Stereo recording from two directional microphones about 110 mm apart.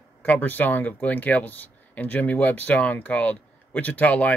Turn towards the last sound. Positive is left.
turn(degrees=15)  # may be behind; listen again after turning